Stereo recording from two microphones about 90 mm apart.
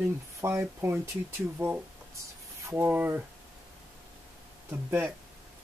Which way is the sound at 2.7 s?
25° right (ahead or behind).